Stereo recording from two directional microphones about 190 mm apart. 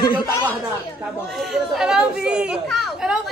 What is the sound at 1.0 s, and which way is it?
Speech, centre (ahead or behind).